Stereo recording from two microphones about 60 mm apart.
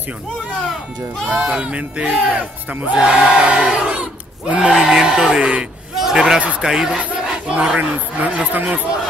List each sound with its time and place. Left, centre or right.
1.4 s crowd: centre
5.9 s a sound: centre
6.6 s crowd: centre
7.4 s speech: centre